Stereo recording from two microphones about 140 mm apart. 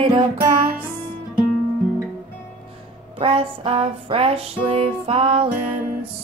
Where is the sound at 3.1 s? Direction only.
40° right (ahead or behind).